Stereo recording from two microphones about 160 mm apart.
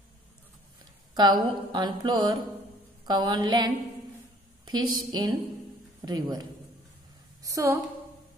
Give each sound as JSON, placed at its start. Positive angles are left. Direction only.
{"t": 1.1, "sound": "speech", "side_deg": -25}
{"t": 7.4, "sound": "a woman's voice", "side_deg": -20}